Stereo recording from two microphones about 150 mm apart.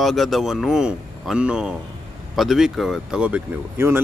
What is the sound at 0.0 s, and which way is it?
A man's voice, centre (ahead or behind).